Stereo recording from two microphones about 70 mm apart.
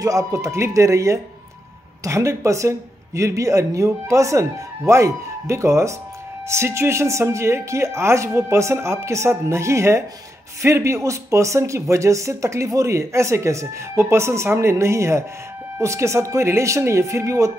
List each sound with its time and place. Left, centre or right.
0.0 s speech: right